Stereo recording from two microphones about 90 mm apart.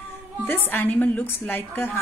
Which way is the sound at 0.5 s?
25° left (ahead or behind).